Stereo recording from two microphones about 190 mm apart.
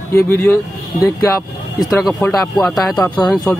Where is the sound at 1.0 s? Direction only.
20° left (ahead or behind).